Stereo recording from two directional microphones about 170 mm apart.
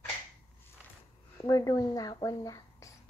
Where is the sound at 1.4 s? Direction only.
20° left (ahead or behind).